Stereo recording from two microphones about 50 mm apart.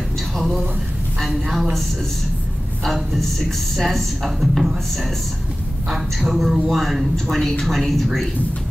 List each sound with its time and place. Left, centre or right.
0.4 s a sound: centre
1.2 s a woman's voice: centre
2.8 s speech: centre